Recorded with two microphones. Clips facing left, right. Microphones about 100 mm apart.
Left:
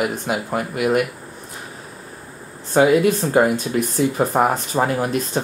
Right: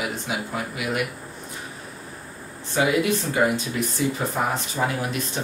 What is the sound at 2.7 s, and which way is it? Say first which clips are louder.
Speech: left 7 dB; 45° left (ahead or behind).